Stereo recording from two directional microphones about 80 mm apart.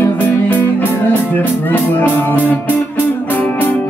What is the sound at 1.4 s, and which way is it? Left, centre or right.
Speech, left.